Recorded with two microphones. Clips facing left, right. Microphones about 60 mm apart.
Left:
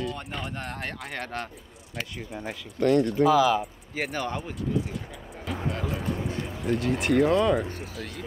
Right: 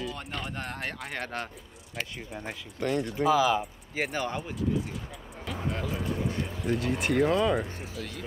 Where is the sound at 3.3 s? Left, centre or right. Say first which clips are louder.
Left 1 dB; right.